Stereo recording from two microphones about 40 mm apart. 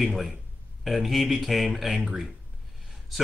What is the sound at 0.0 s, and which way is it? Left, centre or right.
Speech, centre.